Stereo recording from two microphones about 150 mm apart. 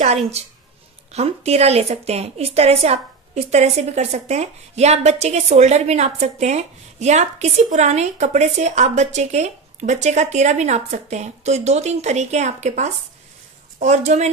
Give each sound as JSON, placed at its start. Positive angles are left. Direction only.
{"t": 0.0, "sound": "a woman's voice", "side_deg": -45}